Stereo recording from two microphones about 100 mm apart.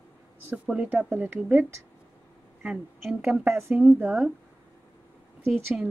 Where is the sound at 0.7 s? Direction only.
10° right (ahead or behind).